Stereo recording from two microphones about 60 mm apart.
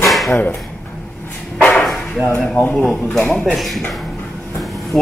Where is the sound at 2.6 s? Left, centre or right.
Left.